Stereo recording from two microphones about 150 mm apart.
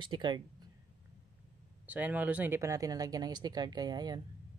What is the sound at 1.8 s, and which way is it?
Speech, 10° right (ahead or behind).